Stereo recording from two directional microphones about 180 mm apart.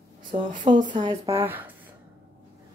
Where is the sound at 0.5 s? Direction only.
45° right (ahead or behind).